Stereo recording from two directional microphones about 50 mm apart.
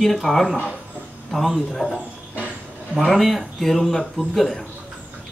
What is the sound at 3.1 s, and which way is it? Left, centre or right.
Speech, centre.